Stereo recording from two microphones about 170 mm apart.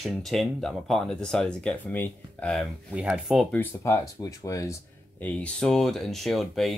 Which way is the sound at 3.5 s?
15° left (ahead or behind).